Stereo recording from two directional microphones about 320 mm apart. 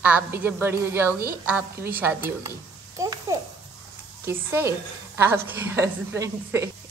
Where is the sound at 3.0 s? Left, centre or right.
Centre.